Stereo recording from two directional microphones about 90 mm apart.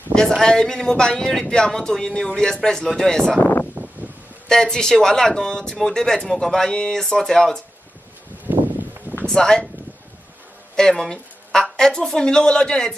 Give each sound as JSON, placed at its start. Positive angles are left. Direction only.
{"t": 0.4, "sound": "speech", "side_deg": 5}
{"t": 3.8, "sound": "a sound", "side_deg": -20}
{"t": 4.5, "sound": "speech", "side_deg": 5}
{"t": 9.2, "sound": "speech", "side_deg": 10}
{"t": 10.8, "sound": "speech", "side_deg": 5}